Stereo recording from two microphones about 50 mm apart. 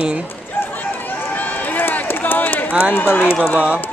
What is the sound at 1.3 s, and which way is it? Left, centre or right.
Run, left.